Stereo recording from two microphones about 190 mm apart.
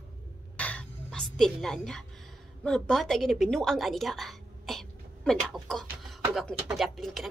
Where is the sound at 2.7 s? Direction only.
5° left (ahead or behind).